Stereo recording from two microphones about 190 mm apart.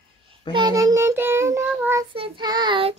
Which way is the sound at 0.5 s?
20° right (ahead or behind).